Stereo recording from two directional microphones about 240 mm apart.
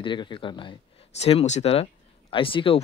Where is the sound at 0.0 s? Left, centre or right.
Centre.